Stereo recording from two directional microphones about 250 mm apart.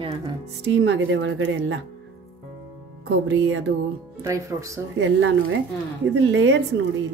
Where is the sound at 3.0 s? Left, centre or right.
Right.